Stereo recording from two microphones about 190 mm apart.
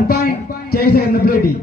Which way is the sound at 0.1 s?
50° left (ahead or behind).